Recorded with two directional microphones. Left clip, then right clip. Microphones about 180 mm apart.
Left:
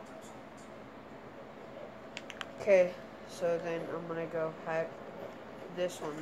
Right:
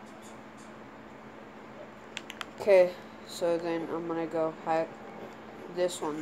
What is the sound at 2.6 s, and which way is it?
Speech, 20° right (ahead or behind).